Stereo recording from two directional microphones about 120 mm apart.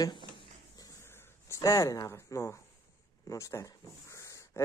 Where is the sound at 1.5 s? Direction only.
30° left (ahead or behind).